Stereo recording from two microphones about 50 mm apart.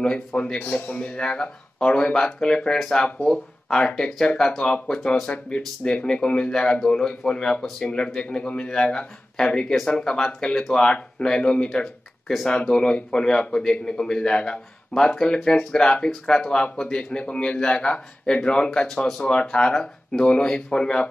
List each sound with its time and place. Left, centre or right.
0.0 s a man's voice: left
11.8 s speech: centre
12.4 s a man's voice: centre
18.7 s a man's voice: centre